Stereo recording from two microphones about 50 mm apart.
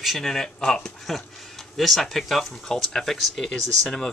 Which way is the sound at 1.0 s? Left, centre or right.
Centre.